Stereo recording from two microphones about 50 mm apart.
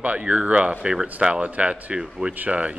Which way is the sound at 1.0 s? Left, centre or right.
Right.